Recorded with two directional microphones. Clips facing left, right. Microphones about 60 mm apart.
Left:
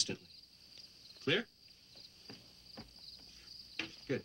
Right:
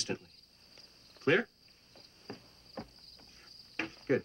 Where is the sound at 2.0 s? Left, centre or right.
Right.